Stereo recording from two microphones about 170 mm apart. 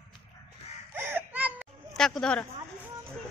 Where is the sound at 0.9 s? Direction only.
15° right (ahead or behind).